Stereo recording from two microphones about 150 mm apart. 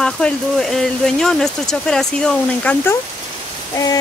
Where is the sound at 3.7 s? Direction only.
25° left (ahead or behind).